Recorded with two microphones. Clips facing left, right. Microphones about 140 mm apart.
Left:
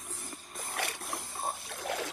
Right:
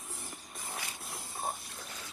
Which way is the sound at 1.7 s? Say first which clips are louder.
Left 12 dB; 85° left.